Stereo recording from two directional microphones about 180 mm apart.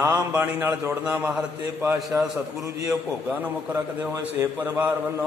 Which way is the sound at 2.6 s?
20° right (ahead or behind).